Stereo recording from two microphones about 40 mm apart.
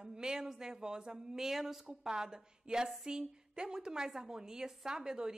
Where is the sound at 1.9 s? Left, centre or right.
Centre.